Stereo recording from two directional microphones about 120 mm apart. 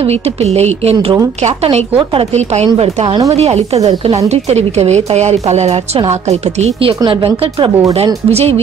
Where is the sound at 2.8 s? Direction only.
55° right (ahead or behind).